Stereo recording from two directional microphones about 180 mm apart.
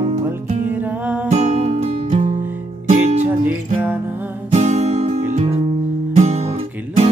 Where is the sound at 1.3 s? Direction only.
40° right (ahead or behind).